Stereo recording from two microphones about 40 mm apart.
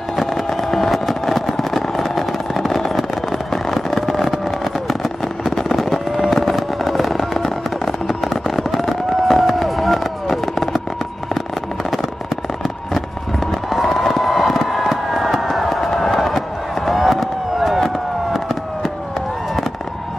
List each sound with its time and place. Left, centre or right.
0.1 s vehicle: centre
6.3 s fireworks: centre
12.6 s fireworks: centre